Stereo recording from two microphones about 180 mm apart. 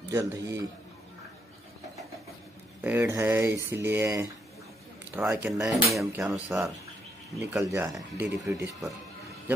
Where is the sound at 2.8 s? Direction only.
10° right (ahead or behind).